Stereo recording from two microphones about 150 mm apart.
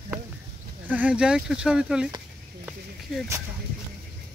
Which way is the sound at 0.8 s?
10° right (ahead or behind).